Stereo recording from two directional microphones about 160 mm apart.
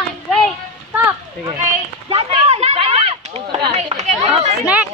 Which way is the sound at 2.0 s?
40° right (ahead or behind).